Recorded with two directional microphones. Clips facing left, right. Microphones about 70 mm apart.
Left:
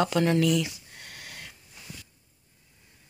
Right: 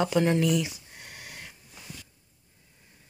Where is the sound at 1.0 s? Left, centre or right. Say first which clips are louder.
Even; centre.